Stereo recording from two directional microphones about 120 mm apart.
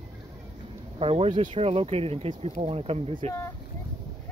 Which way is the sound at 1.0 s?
55° right (ahead or behind).